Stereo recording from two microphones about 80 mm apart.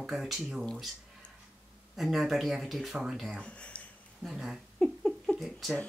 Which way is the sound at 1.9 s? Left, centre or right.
Centre.